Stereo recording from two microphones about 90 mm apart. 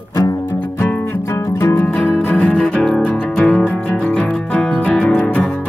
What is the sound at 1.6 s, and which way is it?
Music, 30° left (ahead or behind).